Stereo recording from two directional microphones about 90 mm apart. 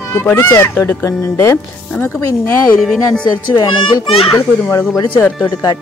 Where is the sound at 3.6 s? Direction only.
65° left (ahead or behind).